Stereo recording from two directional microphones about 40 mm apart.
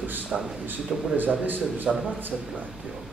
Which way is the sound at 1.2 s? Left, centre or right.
Right.